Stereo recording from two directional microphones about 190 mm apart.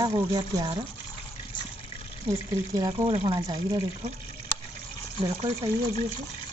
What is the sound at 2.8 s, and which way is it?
Speech, 20° right (ahead or behind).